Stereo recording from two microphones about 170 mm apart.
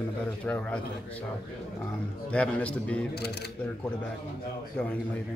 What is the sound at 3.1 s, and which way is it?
Speech, 70° left (ahead or behind).